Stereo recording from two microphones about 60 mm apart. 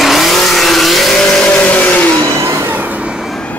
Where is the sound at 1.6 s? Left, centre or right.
Left.